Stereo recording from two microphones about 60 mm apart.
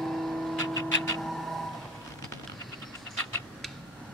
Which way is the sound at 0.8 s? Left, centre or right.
Left.